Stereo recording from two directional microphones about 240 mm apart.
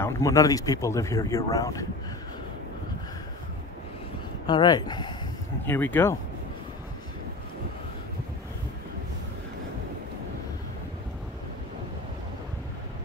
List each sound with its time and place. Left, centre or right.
0.0 s speech: centre
4.5 s speech: centre